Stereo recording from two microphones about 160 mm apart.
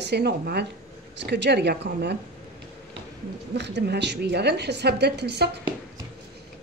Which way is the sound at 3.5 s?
90° right.